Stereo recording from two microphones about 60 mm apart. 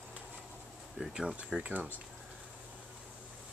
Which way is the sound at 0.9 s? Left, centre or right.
Centre.